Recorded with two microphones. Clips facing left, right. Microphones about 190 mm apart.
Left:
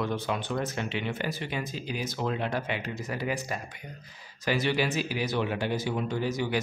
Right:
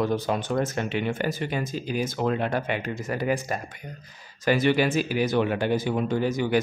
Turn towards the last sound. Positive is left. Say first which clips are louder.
# right 5 dB
turn(degrees=-50)  # may be behind; listen again after turning